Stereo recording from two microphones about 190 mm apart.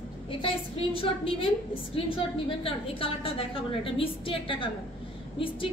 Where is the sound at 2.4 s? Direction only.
30° left (ahead or behind).